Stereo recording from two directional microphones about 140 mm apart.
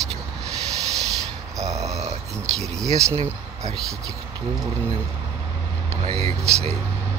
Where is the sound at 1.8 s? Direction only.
50° right (ahead or behind).